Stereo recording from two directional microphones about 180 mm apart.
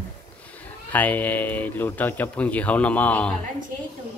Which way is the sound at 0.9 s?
10° left (ahead or behind).